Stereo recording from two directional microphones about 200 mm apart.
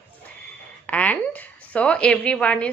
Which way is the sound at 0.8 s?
5° left (ahead or behind).